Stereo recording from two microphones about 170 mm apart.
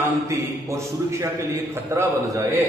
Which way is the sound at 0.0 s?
15° right (ahead or behind).